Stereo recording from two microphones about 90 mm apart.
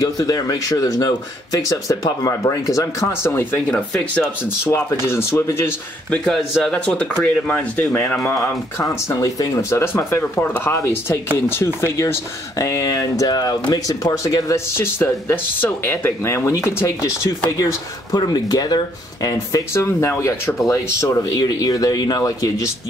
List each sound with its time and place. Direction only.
0.0 s speech: 45° left (ahead or behind); by 3.6 s 25° left (ahead or behind)
3.7 s speech: 10° left (ahead or behind)
4.6 s speech: 30° left (ahead or behind)
6.0 s speech: 10° left (ahead or behind); by 17.7 s 35° left (ahead or behind)
18.1 s speech: 50° left (ahead or behind)